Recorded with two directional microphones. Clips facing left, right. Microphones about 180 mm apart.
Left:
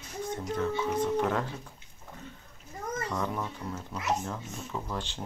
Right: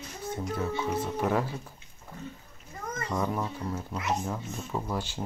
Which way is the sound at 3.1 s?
10° right (ahead or behind).